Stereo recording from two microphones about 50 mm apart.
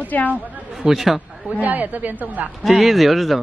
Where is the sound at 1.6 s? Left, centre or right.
Right.